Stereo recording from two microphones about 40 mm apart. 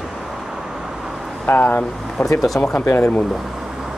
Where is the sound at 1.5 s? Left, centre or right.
Left.